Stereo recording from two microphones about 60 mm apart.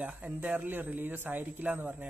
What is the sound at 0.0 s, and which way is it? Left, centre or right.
Speech, right.